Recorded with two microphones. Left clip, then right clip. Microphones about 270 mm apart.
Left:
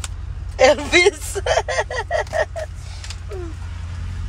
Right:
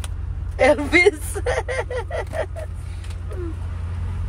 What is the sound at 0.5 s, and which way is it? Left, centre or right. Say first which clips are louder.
Speech: left 2 dB; centre.